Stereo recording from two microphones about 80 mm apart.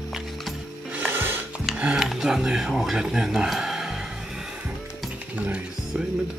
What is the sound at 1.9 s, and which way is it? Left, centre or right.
Speech, centre.